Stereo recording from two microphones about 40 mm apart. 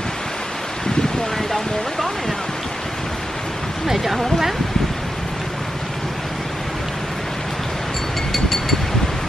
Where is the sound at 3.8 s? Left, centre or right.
Centre.